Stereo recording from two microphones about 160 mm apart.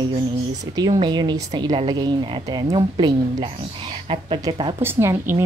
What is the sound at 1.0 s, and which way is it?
Speech, 25° right (ahead or behind).